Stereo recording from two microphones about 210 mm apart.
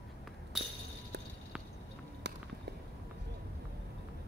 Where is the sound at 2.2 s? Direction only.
55° right (ahead or behind).